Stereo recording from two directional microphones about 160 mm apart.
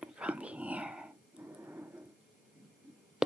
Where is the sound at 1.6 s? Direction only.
10° right (ahead or behind).